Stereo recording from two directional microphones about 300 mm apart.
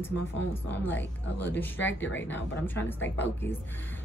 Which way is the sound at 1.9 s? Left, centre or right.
Left.